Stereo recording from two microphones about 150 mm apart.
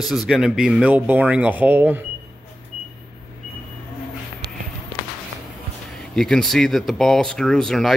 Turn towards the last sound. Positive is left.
turn(degrees=0)  # may be behind; listen again after turning